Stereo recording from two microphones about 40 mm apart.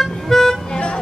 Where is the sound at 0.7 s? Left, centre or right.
Left.